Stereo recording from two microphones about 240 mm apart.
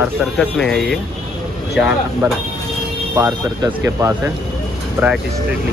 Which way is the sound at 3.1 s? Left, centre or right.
Centre.